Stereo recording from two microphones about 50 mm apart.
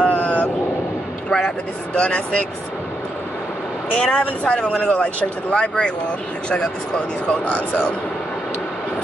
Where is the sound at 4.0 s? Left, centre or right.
Centre.